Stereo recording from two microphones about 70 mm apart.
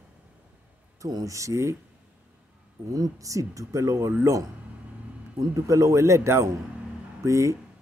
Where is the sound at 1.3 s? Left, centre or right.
Right.